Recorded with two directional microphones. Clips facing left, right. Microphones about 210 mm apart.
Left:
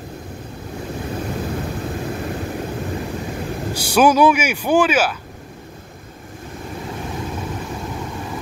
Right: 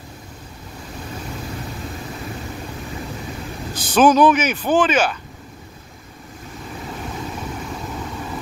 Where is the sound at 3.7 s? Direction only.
10° left (ahead or behind).